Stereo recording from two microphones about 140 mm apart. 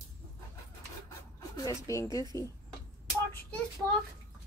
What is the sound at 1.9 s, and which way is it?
Speech, 25° left (ahead or behind).